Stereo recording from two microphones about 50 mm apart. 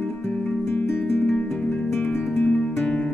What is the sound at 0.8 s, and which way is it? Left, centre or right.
Music, left.